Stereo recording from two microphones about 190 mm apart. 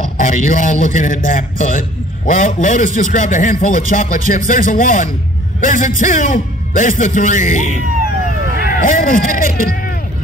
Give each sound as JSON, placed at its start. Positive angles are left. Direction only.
{"t": 0.2, "sound": "a man's voice", "side_deg": 40}